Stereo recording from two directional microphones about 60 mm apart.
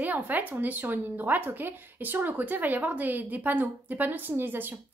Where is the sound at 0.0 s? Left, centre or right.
Right.